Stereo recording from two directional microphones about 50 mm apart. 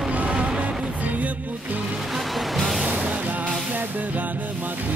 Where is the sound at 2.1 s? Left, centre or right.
Centre.